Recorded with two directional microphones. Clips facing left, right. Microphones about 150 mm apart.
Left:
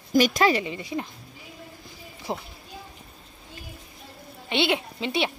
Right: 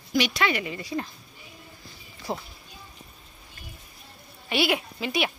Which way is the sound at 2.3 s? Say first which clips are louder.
Even; 20° left (ahead or behind).